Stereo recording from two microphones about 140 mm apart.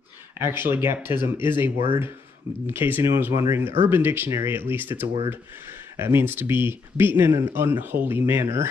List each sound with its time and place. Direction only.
0.4 s speech: 15° right (ahead or behind)